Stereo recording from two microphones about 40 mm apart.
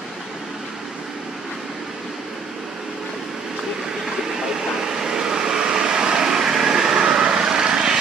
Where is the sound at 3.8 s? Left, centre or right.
Centre.